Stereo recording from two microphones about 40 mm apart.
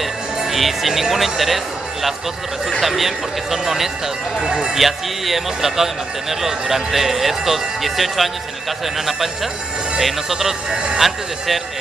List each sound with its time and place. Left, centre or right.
0.4 s speech: centre
4.4 s speech: centre
4.7 s speech: centre
10.7 s speech: right
11.0 s speech: centre